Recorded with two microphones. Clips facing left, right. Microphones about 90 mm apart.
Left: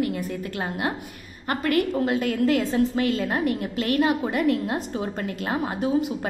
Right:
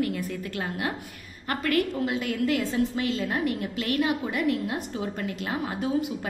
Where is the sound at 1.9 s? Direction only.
40° left (ahead or behind).